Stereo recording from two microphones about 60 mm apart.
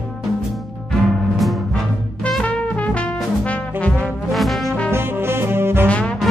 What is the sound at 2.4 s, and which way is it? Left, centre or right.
Music, left.